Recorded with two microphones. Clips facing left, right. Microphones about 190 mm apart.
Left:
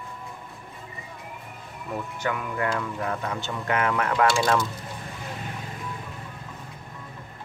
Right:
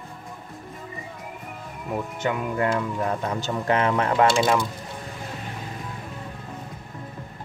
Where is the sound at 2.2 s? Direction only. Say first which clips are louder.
Right 3 dB; 25° right (ahead or behind).